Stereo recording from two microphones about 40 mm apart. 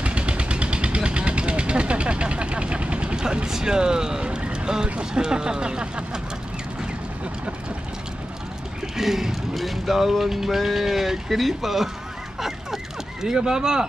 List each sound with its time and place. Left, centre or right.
0.0 s vehicle: right
3.5 s speech: centre
5.2 s speech: centre
8.9 s vehicle: centre
12.4 s a sound: centre